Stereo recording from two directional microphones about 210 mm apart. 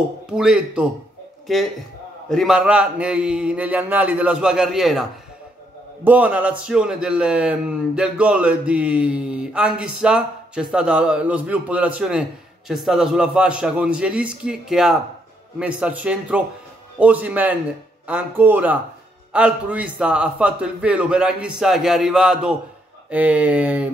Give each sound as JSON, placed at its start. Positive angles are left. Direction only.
{"t": 0.3, "sound": "speech", "side_deg": -5}
{"t": 6.0, "sound": "speech", "side_deg": -5}